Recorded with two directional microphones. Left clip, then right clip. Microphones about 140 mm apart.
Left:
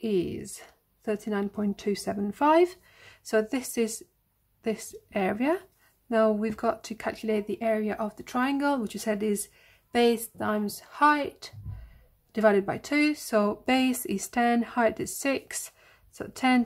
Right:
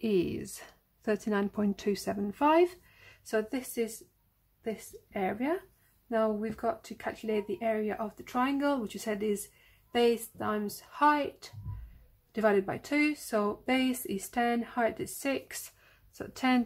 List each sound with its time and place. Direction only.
0.0 s speech: 5° right (ahead or behind); by 16.6 s 15° left (ahead or behind)